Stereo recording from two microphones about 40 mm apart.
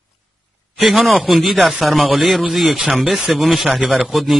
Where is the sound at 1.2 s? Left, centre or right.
Centre.